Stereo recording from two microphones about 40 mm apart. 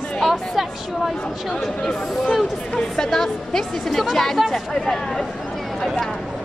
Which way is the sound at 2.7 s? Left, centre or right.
Centre.